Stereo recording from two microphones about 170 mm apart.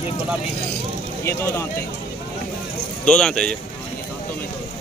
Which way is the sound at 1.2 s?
15° left (ahead or behind).